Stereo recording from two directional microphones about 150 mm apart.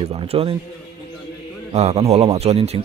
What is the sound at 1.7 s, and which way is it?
Speech, 45° right (ahead or behind).